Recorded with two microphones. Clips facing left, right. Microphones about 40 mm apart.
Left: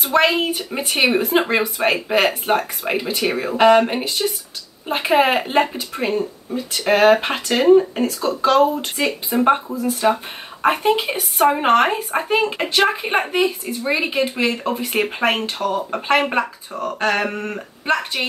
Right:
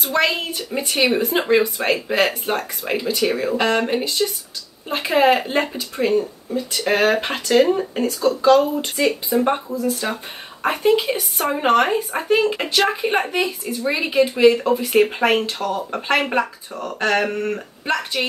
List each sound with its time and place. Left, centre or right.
0.0 s speech: centre